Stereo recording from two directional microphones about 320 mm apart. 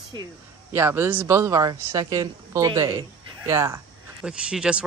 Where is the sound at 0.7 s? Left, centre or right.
Centre.